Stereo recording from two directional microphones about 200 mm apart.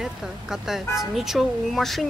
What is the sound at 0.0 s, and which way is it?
Speech, centre (ahead or behind).